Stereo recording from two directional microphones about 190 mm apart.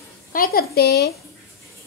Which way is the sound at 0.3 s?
50° left (ahead or behind).